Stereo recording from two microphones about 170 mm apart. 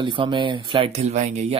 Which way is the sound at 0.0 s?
30° right (ahead or behind).